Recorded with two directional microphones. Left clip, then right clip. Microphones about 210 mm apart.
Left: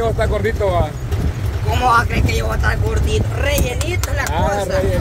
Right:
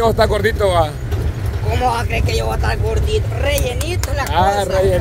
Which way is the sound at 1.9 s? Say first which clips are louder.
Left 3 dB; centre (ahead or behind).